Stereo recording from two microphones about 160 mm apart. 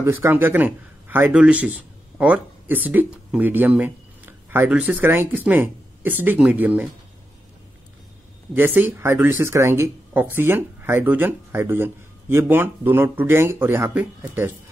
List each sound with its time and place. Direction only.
0.0 s speech: 15° right (ahead or behind)
8.5 s speech: 10° right (ahead or behind)